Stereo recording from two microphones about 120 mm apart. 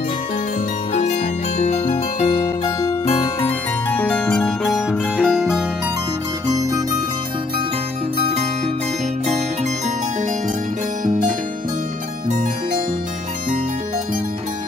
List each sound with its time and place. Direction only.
1.6 s music: 65° left (ahead or behind); by 2.7 s 45° left (ahead or behind)
3.4 s music: 10° left (ahead or behind)
6.4 s music: 30° right (ahead or behind)
8.2 s music: 55° right (ahead or behind)
11.1 s music: 90° right